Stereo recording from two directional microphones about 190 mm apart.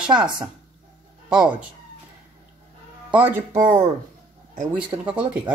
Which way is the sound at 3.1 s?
10° right (ahead or behind).